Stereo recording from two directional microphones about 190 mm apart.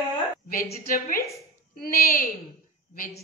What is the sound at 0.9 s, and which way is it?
A woman's voice, 50° left (ahead or behind).